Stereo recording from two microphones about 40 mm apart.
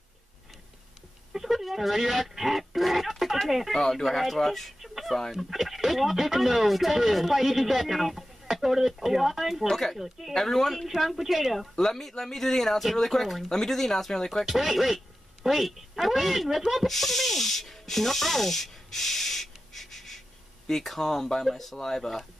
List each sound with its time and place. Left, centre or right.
1.3 s a sound: centre
3.4 s speech: centre
3.7 s speech: centre
9.7 s speech: centre
9.9 s speech: centre
10.3 s speech: centre
14.4 s speech: centre